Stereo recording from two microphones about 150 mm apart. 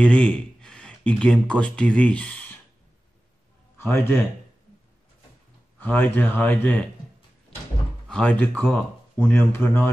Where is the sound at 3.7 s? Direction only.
15° left (ahead or behind).